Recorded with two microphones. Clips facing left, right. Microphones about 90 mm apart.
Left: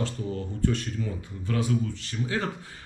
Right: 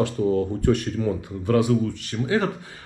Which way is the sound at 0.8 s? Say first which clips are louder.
Right 8 dB; 60° right (ahead or behind).